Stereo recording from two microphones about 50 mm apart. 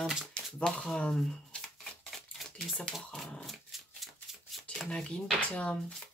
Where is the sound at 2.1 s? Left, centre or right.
Centre.